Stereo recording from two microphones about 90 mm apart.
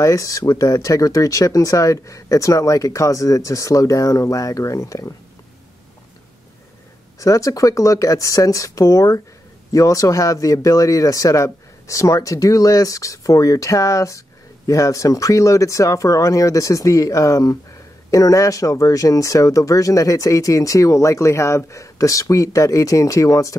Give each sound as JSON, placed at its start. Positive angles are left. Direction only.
{"t": 0.0, "sound": "speech", "side_deg": 40}
{"t": 7.2, "sound": "speech", "side_deg": 40}